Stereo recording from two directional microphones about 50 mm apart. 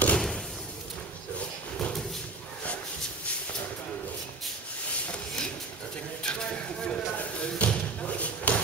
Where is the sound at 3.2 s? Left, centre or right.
Left.